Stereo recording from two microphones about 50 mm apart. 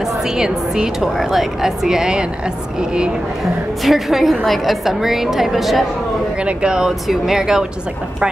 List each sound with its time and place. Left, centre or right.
0.4 s a woman's voice: centre
3.8 s a woman's voice: centre
6.4 s a woman's voice: centre